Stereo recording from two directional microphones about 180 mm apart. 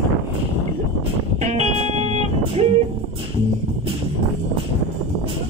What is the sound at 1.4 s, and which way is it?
Music, 40° right (ahead or behind).